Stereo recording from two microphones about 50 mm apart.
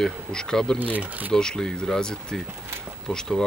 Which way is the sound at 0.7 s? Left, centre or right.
Right.